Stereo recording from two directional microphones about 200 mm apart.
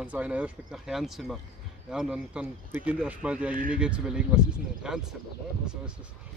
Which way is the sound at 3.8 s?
5° right (ahead or behind).